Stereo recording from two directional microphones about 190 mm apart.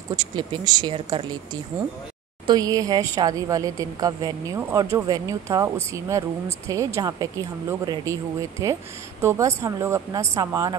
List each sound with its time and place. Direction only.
0.1 s speech: 20° right (ahead or behind)